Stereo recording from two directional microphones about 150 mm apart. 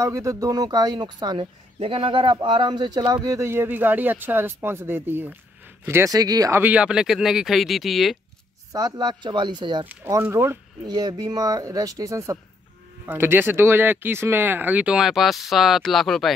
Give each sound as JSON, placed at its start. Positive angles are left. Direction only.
{"t": 0.0, "sound": "speech", "side_deg": -20}
{"t": 6.6, "sound": "speech", "side_deg": -10}
{"t": 8.7, "sound": "speech", "side_deg": -25}
{"t": 10.2, "sound": "speech", "side_deg": -15}
{"t": 10.9, "sound": "speech", "side_deg": -25}